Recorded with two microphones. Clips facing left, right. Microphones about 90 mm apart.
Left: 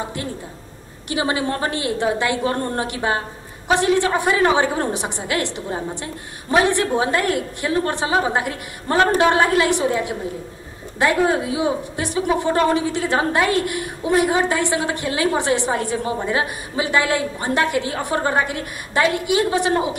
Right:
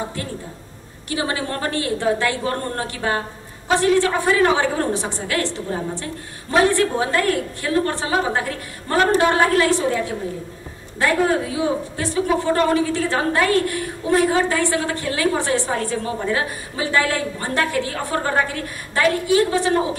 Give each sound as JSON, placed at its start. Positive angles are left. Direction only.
{"t": 1.0, "sound": "a woman's voice", "side_deg": 15}